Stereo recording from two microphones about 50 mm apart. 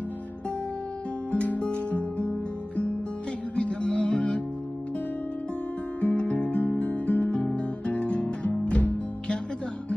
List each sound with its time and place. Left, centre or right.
1.3 s music: left
5.9 s music: left